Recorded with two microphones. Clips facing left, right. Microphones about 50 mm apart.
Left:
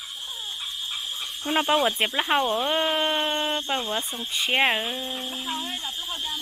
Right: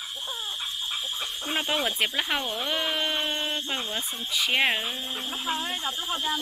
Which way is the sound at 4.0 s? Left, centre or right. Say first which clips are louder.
Even; centre.